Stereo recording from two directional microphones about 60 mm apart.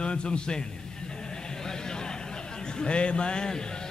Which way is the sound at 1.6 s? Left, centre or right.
Centre.